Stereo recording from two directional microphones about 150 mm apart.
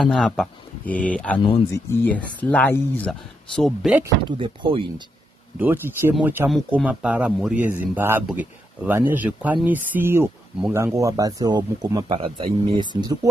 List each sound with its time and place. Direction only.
0.0 s speech: 5° left (ahead or behind)
4.4 s speech: 35° right (ahead or behind)
5.6 s speech: 15° right (ahead or behind)